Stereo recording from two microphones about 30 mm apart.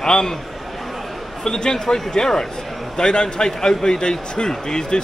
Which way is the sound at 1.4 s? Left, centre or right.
Left.